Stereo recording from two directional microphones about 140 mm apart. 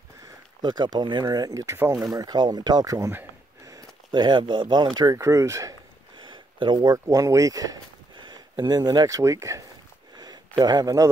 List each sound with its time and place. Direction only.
0.6 s speech: 30° right (ahead or behind)
10.1 s a sound: 30° right (ahead or behind)
10.5 s speech: 25° right (ahead or behind)